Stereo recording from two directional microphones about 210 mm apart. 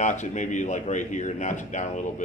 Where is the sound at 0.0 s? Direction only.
35° left (ahead or behind).